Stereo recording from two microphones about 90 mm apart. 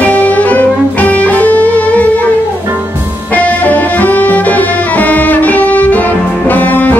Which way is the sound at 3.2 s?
15° left (ahead or behind).